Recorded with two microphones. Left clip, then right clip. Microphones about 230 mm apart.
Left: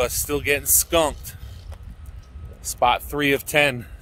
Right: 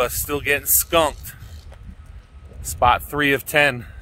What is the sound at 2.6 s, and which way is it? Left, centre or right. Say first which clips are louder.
Speech: right 2 dB; centre.